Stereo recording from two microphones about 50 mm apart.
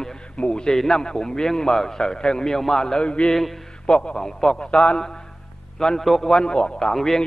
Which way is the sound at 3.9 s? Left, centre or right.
Centre.